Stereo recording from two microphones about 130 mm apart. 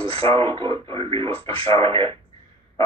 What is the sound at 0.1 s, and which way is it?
Speech, 45° right (ahead or behind).